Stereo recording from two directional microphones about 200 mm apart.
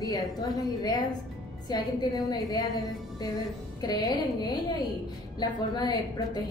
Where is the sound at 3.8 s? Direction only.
20° left (ahead or behind).